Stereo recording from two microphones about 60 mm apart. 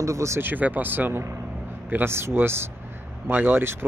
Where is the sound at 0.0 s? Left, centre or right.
Right.